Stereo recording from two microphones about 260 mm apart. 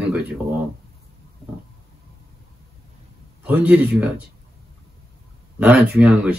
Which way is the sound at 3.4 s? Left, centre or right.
Centre.